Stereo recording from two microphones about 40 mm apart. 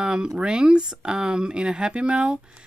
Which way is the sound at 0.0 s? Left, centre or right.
Right.